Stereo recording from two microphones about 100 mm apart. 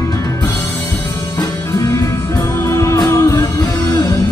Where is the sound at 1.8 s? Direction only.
35° left (ahead or behind).